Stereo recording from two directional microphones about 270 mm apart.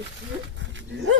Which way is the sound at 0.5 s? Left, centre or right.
Right.